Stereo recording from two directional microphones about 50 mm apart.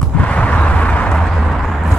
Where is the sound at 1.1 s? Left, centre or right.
Centre.